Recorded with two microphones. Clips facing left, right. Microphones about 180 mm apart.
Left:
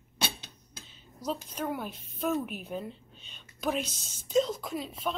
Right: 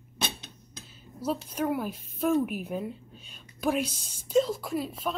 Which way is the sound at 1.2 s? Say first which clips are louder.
Right 4 dB; 10° right (ahead or behind).